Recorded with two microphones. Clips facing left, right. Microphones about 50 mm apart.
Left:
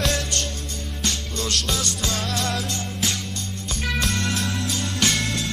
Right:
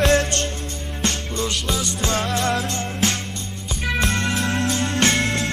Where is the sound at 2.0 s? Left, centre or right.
Right.